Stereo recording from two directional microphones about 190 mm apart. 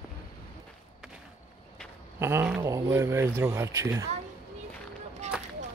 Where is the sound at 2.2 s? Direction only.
15° right (ahead or behind).